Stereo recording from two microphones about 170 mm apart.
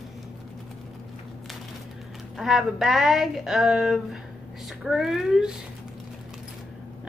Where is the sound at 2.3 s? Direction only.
Centre (ahead or behind).